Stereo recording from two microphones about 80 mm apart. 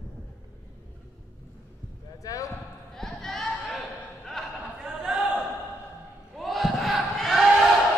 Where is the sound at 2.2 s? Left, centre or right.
Left.